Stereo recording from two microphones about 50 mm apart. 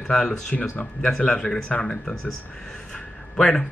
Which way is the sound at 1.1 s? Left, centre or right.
Centre.